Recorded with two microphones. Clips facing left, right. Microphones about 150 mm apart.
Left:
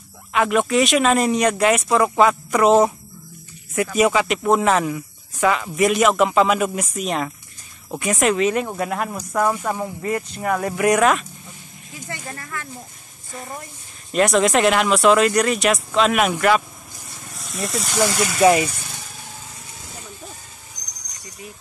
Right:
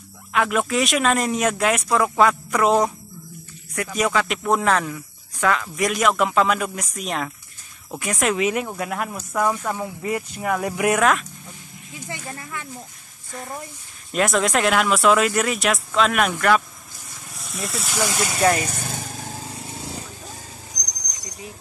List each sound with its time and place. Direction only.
0.3 s speech: centre (ahead or behind)
8.4 s speech: 10° right (ahead or behind)
8.6 s speech: centre (ahead or behind)
9.8 s speech: 10° right (ahead or behind)
12.1 s speech: 15° right (ahead or behind)
13.3 s speech: centre (ahead or behind)
18.6 s vehicle: 45° right (ahead or behind); by 19.9 s 30° right (ahead or behind)
20.7 s a sound: 40° right (ahead or behind)